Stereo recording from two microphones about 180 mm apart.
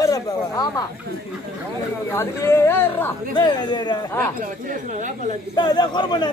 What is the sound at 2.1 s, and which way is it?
Speech, 15° left (ahead or behind).